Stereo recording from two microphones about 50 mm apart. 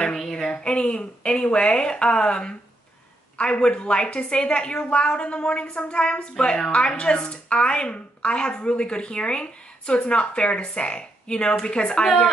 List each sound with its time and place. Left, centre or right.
0.3 s a woman's voice: centre